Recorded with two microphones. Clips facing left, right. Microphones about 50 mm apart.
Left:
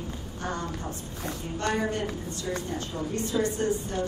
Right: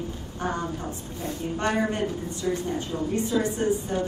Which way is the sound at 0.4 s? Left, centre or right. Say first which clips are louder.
Right 4 dB; centre.